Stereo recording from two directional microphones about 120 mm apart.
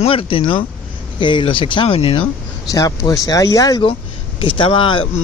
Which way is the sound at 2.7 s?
30° left (ahead or behind).